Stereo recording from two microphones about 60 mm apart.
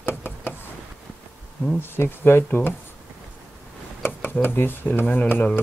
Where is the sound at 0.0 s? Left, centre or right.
Left.